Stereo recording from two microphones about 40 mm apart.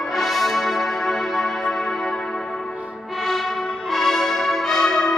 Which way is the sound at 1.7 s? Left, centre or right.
Centre.